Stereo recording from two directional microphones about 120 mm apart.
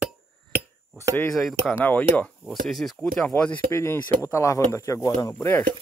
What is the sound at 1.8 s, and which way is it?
Speech, 15° left (ahead or behind).